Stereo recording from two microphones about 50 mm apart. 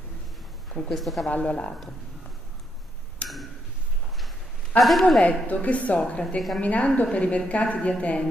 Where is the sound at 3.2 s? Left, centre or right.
Left.